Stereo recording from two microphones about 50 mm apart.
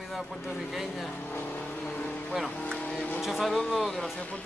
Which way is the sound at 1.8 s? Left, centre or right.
Left.